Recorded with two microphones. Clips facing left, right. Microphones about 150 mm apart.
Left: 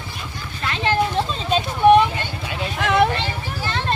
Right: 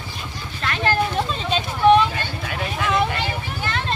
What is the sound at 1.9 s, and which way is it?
Vehicle, 15° left (ahead or behind).